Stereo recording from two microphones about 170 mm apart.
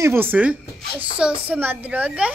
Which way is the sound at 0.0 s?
15° right (ahead or behind).